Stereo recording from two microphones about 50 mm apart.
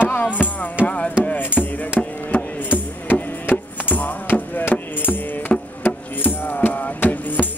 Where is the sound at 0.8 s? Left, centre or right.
Left.